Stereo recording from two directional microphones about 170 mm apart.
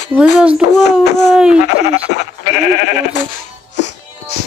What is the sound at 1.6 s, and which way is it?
Speech, 80° left.